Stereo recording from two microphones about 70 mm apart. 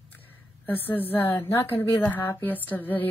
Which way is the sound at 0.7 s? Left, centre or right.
Left.